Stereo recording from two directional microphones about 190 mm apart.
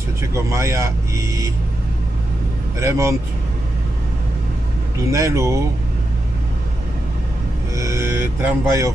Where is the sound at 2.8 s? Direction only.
15° right (ahead or behind).